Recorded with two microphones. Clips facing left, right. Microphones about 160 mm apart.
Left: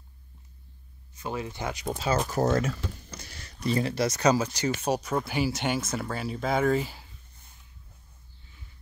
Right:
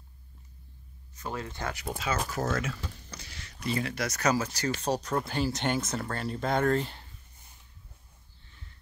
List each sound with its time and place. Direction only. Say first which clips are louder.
1.2 s speech: left 3 dB; 10° left (ahead or behind)
2.0 s speech: left 6 dB; 35° left (ahead or behind); by 7.1 s 5° left (ahead or behind)